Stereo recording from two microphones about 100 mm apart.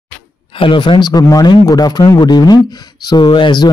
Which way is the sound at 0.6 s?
55° left (ahead or behind).